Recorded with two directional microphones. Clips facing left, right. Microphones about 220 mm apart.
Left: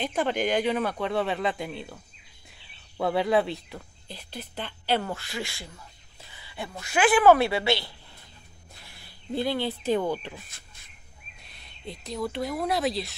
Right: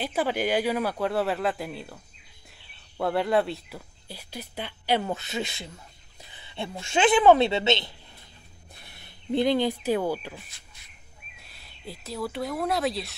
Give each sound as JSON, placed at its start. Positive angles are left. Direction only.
{"t": 0.0, "sound": "speech", "side_deg": -5}
{"t": 3.0, "sound": "speech", "side_deg": 0}
{"t": 6.3, "sound": "a sound", "side_deg": -25}
{"t": 6.8, "sound": "speech", "side_deg": -25}
{"t": 11.4, "sound": "speech", "side_deg": 0}